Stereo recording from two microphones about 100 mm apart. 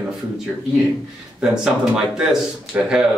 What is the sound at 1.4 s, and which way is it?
Speech, 5° right (ahead or behind).